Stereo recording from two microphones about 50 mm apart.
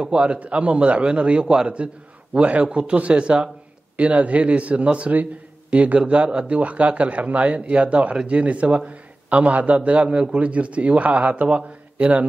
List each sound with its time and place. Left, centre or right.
0.0 s a man's voice: right